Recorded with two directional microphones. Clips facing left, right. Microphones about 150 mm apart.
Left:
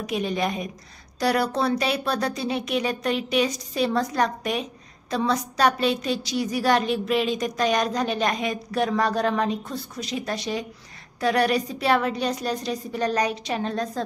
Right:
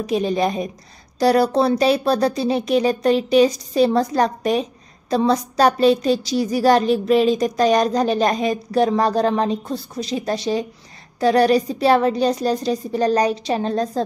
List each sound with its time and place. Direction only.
0.0 s a woman's voice: 35° right (ahead or behind)